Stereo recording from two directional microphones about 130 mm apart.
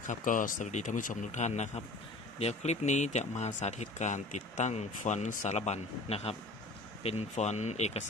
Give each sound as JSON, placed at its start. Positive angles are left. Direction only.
{"t": 0.0, "sound": "speech", "side_deg": 85}